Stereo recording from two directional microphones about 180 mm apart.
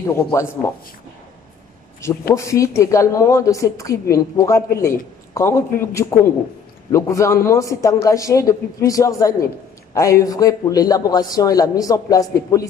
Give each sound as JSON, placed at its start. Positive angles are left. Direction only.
{"t": 0.0, "sound": "speech", "side_deg": 15}
{"t": 2.0, "sound": "a man's voice", "side_deg": 15}